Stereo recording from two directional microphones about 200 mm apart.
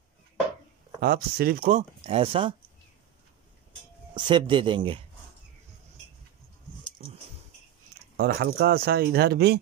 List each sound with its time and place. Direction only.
1.0 s speech: 50° right (ahead or behind)
1.8 s speech: 30° right (ahead or behind)
4.1 s speech: 25° right (ahead or behind)
8.2 s speech: 50° right (ahead or behind)